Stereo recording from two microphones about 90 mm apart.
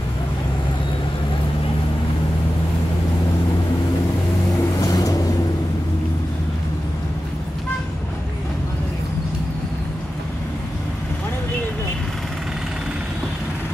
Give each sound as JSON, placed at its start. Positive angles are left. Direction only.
{"t": 4.7, "sound": "boat", "side_deg": 40}